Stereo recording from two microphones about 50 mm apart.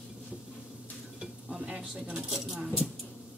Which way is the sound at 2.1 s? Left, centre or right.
Centre.